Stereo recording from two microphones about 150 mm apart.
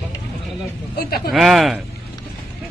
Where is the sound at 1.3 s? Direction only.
Centre (ahead or behind).